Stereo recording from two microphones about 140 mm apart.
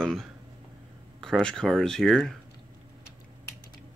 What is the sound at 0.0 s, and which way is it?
Speech, 5° left (ahead or behind).